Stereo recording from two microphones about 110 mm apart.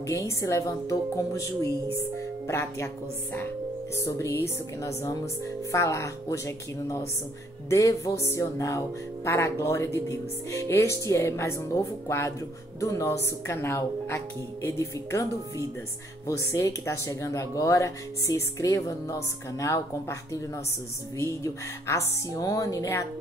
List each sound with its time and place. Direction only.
0.0 s music: 30° left (ahead or behind)
3.9 s music: 25° left (ahead or behind)
16.3 s music: 30° left (ahead or behind)